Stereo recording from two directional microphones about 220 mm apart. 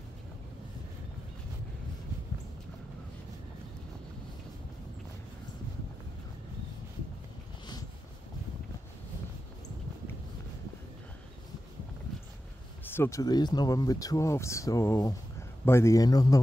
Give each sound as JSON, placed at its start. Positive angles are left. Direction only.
{"t": 12.8, "sound": "speech", "side_deg": 10}